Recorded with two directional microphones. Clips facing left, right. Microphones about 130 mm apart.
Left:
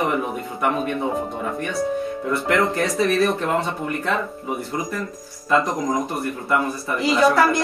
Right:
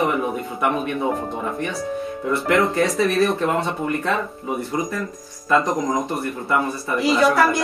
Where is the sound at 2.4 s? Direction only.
Centre (ahead or behind).